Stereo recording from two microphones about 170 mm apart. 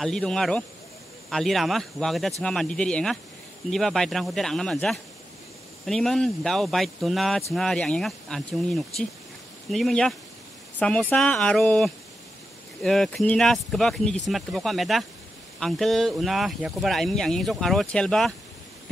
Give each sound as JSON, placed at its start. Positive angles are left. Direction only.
{"t": 0.0, "sound": "speech", "side_deg": 0}